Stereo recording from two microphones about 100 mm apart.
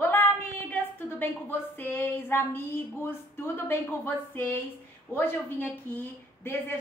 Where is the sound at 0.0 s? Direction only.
20° left (ahead or behind).